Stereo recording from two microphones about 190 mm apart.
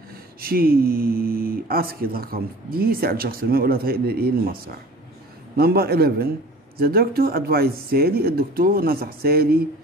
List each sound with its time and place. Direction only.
0.4 s speech: 50° right (ahead or behind)
5.6 s speech: 55° right (ahead or behind)